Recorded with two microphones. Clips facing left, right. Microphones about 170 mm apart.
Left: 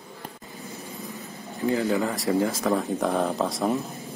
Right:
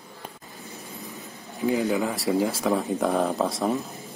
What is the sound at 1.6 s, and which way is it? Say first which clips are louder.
Speech: right 1 dB; 15° right (ahead or behind).